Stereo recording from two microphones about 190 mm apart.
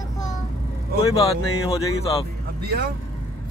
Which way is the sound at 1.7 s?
30° left (ahead or behind).